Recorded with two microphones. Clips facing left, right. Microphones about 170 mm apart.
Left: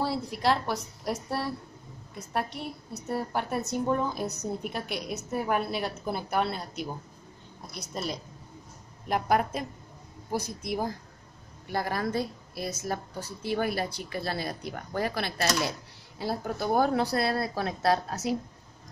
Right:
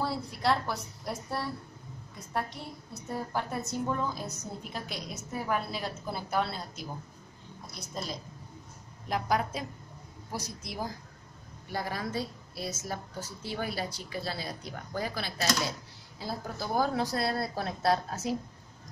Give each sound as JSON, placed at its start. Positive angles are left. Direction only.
{"t": 0.0, "sound": "a woman's voice", "side_deg": 70}
{"t": 7.9, "sound": "a woman's voice", "side_deg": 65}
{"t": 9.1, "sound": "a woman's voice", "side_deg": 55}